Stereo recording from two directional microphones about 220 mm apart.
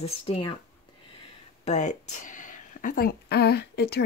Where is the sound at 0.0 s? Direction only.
25° left (ahead or behind).